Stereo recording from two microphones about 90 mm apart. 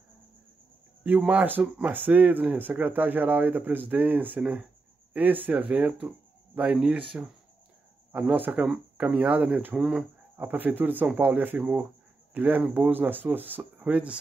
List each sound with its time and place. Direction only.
1.0 s speech: 20° right (ahead or behind)
8.1 s speech: 15° right (ahead or behind)
9.8 s speech: 5° right (ahead or behind)
10.3 s speech: 20° right (ahead or behind)